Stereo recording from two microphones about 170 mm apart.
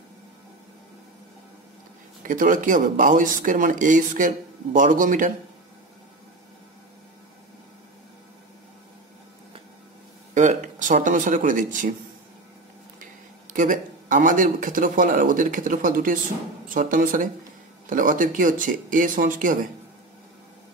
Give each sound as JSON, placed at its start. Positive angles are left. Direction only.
{"t": 2.2, "sound": "speech", "side_deg": -50}
{"t": 10.3, "sound": "speech", "side_deg": -45}
{"t": 13.0, "sound": "speech", "side_deg": -50}